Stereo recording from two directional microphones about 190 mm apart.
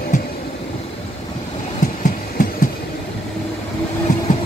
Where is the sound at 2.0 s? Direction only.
45° left (ahead or behind).